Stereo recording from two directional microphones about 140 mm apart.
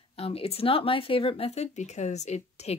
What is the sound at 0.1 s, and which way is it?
Speech, 45° left (ahead or behind).